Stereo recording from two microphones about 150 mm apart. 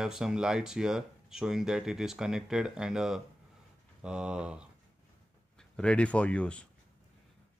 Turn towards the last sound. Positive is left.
turn(degrees=5)  # may be behind; listen again after turning